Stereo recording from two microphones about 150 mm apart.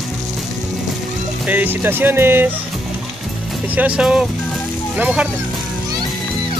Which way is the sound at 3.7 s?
5° right (ahead or behind).